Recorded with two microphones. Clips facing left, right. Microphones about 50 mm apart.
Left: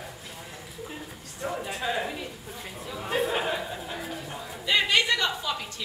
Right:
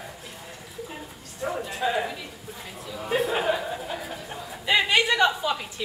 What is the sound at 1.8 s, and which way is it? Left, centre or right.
Speech, centre.